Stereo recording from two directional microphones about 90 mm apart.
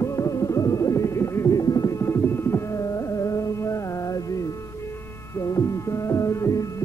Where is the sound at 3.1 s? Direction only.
35° left (ahead or behind).